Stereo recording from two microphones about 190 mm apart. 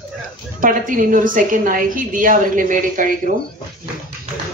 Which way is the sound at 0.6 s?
45° right (ahead or behind).